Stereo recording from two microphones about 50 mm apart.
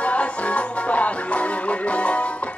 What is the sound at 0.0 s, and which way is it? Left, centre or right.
Music, left.